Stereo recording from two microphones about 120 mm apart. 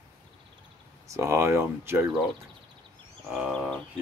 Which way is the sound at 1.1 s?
25° right (ahead or behind).